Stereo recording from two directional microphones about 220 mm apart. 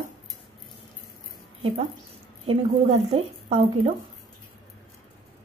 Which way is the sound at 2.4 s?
25° right (ahead or behind).